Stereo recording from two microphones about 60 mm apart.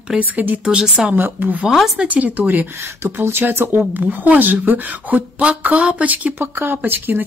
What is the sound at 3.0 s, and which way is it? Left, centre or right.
Speech, right.